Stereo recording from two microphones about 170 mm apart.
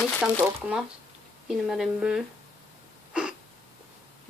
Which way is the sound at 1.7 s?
5° right (ahead or behind).